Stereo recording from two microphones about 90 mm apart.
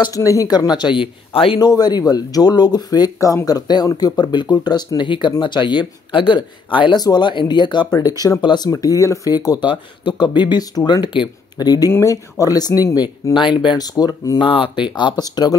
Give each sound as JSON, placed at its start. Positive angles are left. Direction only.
{"t": 0.1, "sound": "speech", "side_deg": 40}
{"t": 1.3, "sound": "speech", "side_deg": 90}
{"t": 1.6, "sound": "speech", "side_deg": 50}
{"t": 7.0, "sound": "speech", "side_deg": 50}
{"t": 8.6, "sound": "speech", "side_deg": 40}
{"t": 11.9, "sound": "speech", "side_deg": 35}
{"t": 13.7, "sound": "speech", "side_deg": 45}
{"t": 14.4, "sound": "speech", "side_deg": 75}